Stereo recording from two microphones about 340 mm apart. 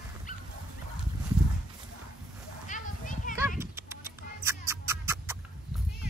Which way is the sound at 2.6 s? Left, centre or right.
Left.